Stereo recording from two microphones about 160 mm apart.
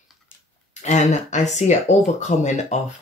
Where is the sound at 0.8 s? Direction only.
45° left (ahead or behind).